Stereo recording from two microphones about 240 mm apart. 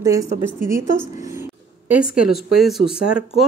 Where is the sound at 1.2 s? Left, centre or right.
Centre.